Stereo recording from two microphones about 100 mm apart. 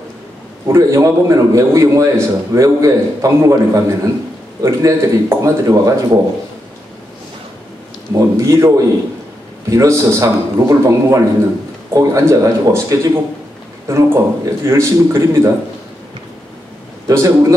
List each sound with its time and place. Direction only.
0.7 s a man's voice: 30° right (ahead or behind)
8.1 s a man's voice: 30° right (ahead or behind)
17.1 s a man's voice: 30° right (ahead or behind)